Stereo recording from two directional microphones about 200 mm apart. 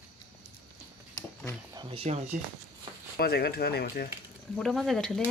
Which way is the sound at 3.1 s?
50° left (ahead or behind).